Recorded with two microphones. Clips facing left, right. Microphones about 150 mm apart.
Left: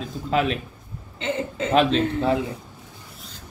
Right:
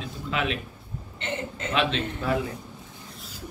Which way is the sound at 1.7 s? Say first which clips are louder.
Left 7 dB; 40° left (ahead or behind).